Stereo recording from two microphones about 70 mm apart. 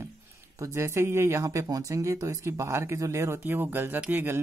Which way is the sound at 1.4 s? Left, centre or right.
Right.